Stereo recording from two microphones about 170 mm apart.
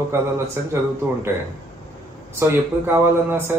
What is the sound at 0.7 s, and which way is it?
Speech, 15° right (ahead or behind).